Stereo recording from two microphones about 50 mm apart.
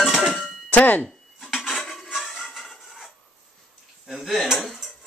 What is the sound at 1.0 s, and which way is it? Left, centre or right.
Dishes, centre.